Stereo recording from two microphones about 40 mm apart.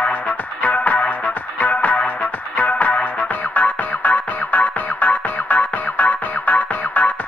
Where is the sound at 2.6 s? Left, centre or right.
Left.